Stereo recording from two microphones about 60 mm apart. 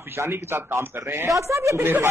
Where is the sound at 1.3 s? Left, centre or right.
Right.